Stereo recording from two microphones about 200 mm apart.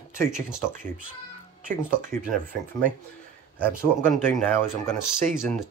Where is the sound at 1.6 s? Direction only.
40° right (ahead or behind).